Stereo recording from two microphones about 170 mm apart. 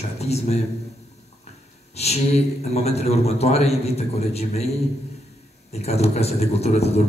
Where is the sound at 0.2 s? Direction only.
40° left (ahead or behind).